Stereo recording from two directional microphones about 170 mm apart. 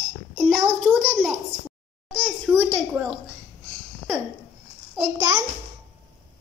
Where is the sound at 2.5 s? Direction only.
Centre (ahead or behind).